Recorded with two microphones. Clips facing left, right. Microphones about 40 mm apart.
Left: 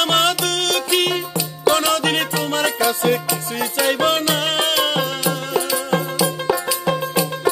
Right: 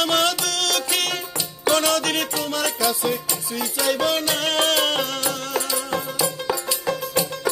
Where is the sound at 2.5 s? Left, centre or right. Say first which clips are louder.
Left 4 dB; left.